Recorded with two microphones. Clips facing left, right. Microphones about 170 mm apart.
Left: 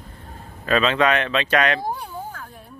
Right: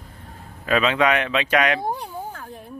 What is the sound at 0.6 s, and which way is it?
Speech, 10° right (ahead or behind).